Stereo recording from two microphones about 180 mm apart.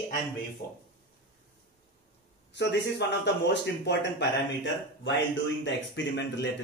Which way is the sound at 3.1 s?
75° left (ahead or behind).